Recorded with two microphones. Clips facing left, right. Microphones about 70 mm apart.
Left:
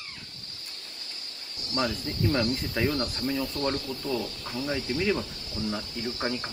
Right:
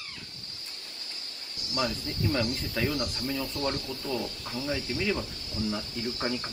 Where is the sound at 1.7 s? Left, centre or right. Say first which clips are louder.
Left 2 dB; left.